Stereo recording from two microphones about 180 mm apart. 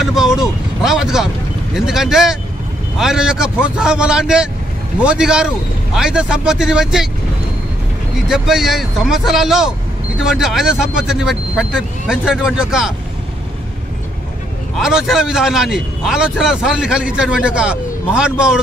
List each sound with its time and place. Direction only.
0.0 s speech: 5° right (ahead or behind)
8.3 s speech: centre (ahead or behind)
14.8 s speech: 5° right (ahead or behind)